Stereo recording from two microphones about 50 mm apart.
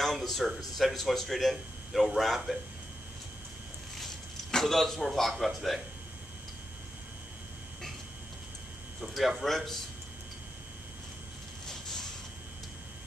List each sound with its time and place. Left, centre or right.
0.0 s speech: centre
4.5 s speech: centre
9.0 s speech: centre
11.6 s vehicle: centre